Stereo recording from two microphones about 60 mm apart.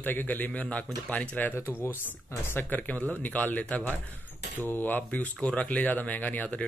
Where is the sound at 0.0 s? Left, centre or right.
Left.